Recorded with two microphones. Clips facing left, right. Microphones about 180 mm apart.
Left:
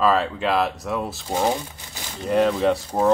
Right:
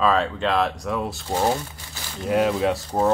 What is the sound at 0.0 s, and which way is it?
Speech, 5° left (ahead or behind).